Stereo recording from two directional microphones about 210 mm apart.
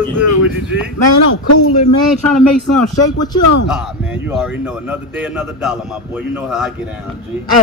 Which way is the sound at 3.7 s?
5° right (ahead or behind).